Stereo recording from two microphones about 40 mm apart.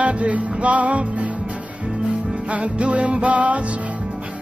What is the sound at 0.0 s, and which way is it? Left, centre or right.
Music, right.